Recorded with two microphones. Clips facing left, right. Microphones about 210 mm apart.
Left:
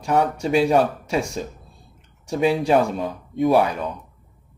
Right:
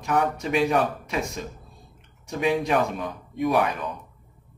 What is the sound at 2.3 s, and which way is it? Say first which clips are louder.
Speech: left 5 dB; 30° left (ahead or behind).